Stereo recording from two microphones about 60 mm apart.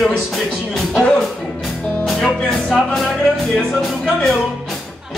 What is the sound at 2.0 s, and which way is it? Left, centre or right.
Music, centre.